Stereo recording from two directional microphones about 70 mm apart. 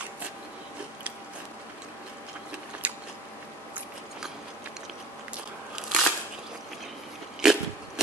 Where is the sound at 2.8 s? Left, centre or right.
Right.